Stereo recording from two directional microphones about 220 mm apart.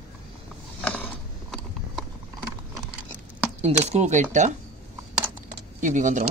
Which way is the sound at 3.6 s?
30° right (ahead or behind).